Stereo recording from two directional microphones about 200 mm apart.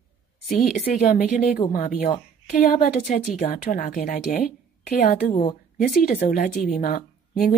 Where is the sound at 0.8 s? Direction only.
40° left (ahead or behind).